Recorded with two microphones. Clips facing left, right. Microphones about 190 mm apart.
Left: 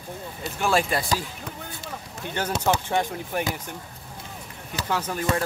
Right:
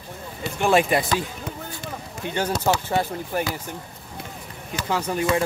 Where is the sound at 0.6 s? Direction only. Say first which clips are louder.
Right 4 dB; 15° right (ahead or behind).